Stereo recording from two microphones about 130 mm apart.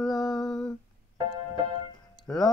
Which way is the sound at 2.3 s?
10° left (ahead or behind).